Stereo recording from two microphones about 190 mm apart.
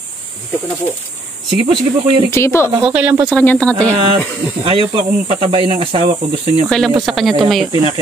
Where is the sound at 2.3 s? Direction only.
15° left (ahead or behind).